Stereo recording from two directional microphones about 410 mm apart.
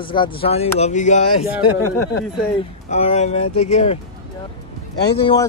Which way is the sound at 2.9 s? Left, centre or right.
Centre.